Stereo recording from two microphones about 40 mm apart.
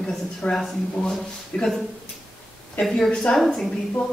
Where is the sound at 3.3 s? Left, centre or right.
Left.